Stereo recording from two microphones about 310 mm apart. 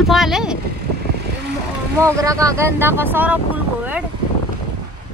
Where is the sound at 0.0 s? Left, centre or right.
Centre.